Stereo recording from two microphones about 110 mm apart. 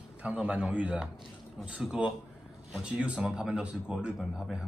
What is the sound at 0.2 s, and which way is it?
Speech, 10° right (ahead or behind).